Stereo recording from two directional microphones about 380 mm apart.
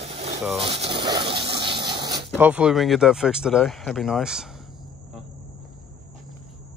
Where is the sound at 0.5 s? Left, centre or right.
Centre.